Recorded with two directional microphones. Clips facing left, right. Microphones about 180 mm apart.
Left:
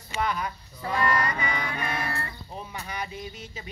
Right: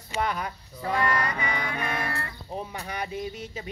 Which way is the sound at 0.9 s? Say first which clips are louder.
Left 1 dB; 60° right (ahead or behind).